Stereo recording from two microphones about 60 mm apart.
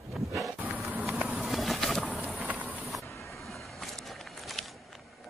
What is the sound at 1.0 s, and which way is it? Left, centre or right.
Vehicle, centre.